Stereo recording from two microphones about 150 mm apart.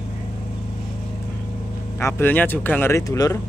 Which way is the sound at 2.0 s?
15° left (ahead or behind).